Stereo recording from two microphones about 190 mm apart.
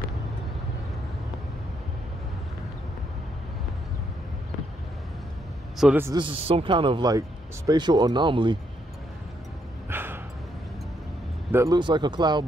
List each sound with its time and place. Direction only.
5.8 s a man's voice: 10° right (ahead or behind)
6.1 s speech: 30° right (ahead or behind)
9.8 s a sound: 10° right (ahead or behind)
11.5 s speech: 20° right (ahead or behind)